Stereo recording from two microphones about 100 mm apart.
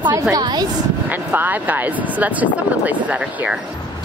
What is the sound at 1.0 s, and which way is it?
Speech, 20° right (ahead or behind).